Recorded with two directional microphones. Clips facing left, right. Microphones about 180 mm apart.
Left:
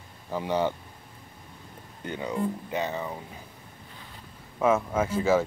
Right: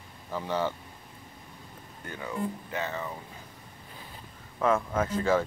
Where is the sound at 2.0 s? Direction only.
20° left (ahead or behind).